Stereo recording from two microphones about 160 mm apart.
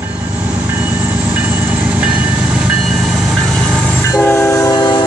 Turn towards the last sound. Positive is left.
turn(degrees=30)  # may be behind; listen again after turning